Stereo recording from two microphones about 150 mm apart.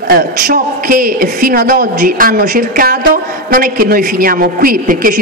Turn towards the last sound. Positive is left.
turn(degrees=-70)  # may be behind; listen again after turning